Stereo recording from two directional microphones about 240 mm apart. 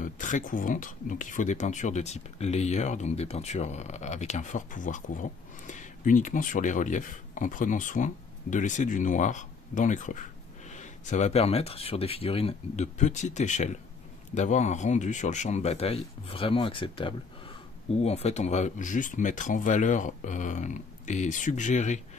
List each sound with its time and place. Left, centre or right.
0.0 s speech: left